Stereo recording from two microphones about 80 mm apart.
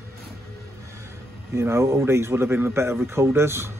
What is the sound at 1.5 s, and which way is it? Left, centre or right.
Speech, right.